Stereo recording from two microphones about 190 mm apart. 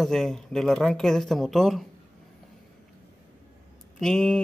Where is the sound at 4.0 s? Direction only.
5° left (ahead or behind).